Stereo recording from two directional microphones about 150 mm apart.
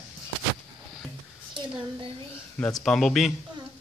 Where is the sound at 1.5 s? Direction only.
35° right (ahead or behind).